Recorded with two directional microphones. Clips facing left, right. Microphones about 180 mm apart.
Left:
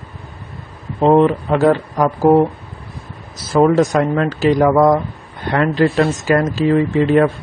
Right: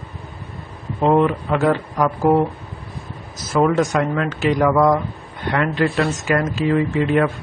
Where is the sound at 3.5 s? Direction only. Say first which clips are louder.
Left 4 dB; 35° left (ahead or behind).